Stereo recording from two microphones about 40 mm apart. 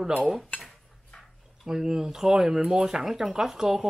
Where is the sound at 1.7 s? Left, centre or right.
Centre.